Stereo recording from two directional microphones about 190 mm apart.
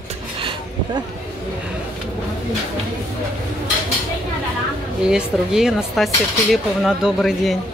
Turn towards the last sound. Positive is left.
turn(degrees=0)  # may be behind; listen again after turning